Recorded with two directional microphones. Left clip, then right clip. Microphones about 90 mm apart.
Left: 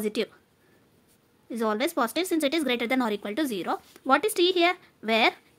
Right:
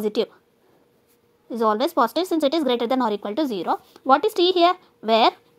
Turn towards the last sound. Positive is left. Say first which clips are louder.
# right 6 dB
turn(degrees=-30)  # may be behind; listen again after turning